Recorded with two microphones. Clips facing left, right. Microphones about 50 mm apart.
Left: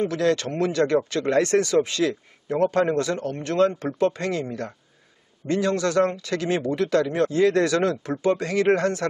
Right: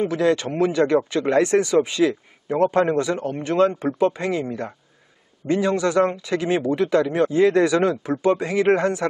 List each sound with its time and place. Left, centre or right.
0.0 s speech: centre